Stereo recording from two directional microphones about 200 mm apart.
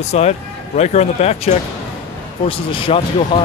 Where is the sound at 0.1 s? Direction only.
30° left (ahead or behind).